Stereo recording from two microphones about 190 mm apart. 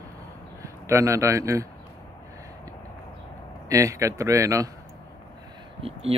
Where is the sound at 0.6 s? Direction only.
15° right (ahead or behind).